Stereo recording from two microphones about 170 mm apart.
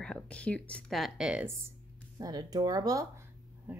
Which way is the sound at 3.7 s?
10° right (ahead or behind).